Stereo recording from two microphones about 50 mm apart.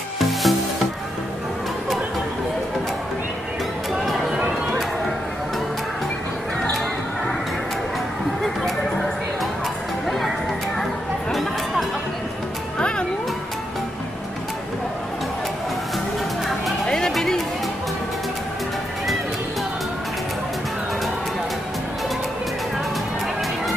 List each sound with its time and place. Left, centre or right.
0.2 s music: centre
3.9 s a sound: centre
4.3 s a sound: centre
10.0 s music: centre
12.7 s music: left
16.8 s music: centre